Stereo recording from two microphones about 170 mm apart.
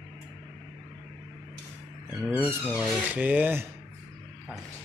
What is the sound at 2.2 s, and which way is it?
Speech, 10° right (ahead or behind).